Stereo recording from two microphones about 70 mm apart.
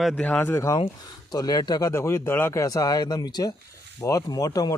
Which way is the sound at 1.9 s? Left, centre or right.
Left.